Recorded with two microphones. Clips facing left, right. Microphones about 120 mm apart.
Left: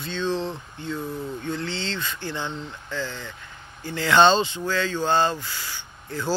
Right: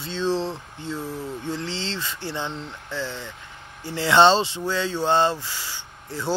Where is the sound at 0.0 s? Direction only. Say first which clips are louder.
Right 2 dB; 30° right (ahead or behind).